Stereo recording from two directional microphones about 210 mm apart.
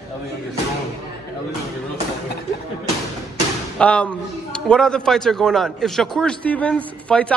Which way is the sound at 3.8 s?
5° left (ahead or behind).